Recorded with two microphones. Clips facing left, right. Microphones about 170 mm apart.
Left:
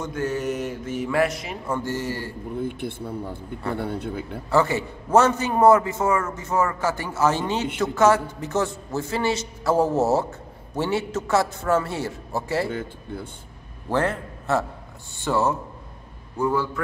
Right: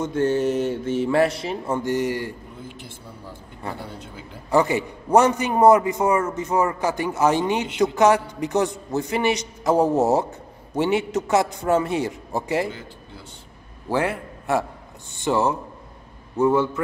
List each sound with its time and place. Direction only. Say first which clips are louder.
0.0 s speech: right 5 dB; 30° right (ahead or behind)
1.8 s a man's voice: right 5 dB; 15° right (ahead or behind)
2.6 s speech: left 10 dB; 60° left (ahead or behind)
4.5 s a man's voice: right 2 dB; 15° right (ahead or behind)
12.7 s speech: left 9 dB; 55° left (ahead or behind)
13.8 s a man's voice: even; 10° right (ahead or behind)